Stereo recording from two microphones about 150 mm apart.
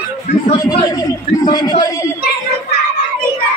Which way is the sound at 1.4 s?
25° left (ahead or behind).